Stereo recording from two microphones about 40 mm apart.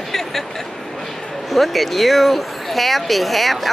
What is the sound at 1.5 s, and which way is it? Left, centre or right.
Speech, centre.